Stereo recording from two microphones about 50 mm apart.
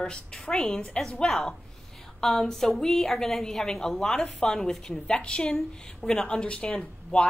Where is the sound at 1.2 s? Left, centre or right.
Centre.